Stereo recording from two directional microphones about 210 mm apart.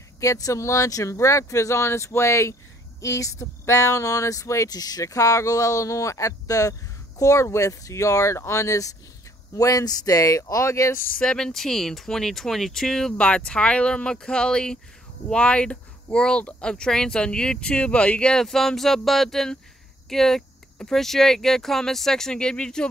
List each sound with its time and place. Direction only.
0.2 s speech: 15° left (ahead or behind)
11.1 s speech: 5° left (ahead or behind)